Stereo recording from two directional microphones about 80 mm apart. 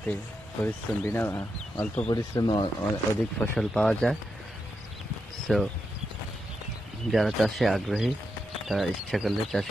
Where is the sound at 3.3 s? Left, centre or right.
Centre.